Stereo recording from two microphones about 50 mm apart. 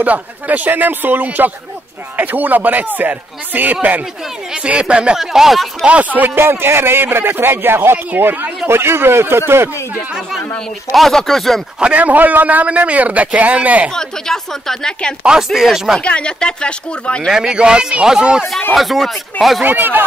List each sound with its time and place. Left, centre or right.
0.0 s a man's voice: right
4.6 s speech: right
5.1 s speech: centre
5.9 s a man's voice: right
6.3 s speech: right
8.6 s speech: right
10.9 s speech: centre
11.8 s a man's voice: right
13.9 s a woman's voice: centre
15.4 s a man's voice: centre
16.0 s speech: left
17.3 s a man's voice: centre
18.8 s speech: centre
19.6 s a man's voice: right